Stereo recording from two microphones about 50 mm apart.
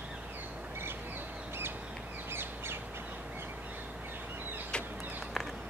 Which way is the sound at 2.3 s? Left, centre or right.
Right.